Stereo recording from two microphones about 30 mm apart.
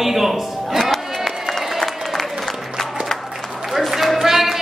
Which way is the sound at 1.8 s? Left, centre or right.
Centre.